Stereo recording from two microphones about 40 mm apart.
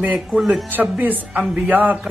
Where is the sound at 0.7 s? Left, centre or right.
Right.